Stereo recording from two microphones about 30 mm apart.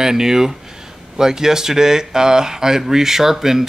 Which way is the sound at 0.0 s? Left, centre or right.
Centre.